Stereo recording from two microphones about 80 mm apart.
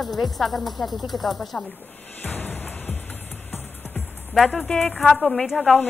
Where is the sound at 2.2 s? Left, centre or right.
Left.